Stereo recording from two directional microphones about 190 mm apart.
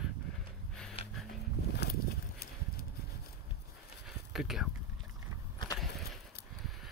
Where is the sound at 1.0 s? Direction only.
30° left (ahead or behind).